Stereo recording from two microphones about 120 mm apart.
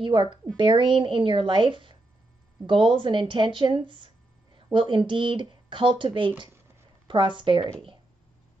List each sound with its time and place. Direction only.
0.0 s speech: 45° right (ahead or behind)